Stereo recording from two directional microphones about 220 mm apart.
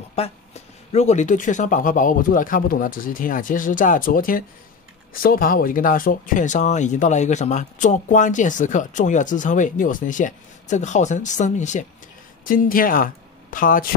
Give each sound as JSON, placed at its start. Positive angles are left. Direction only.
{"t": 0.9, "sound": "speech", "side_deg": 30}